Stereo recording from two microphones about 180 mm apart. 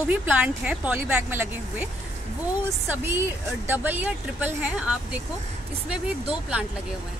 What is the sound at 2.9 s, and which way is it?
A woman's voice, 10° right (ahead or behind).